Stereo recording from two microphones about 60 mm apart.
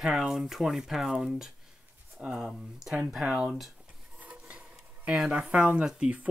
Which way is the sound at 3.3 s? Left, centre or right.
Centre.